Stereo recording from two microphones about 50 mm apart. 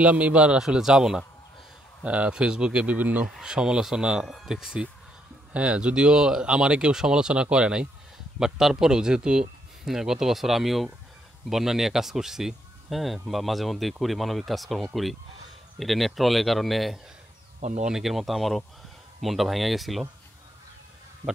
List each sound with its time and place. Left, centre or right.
0.0 s speech: right
0.6 s speech: centre
2.0 s speech: right
3.0 s speech: right
3.3 s speech: centre
5.5 s speech: right
8.4 s speech: centre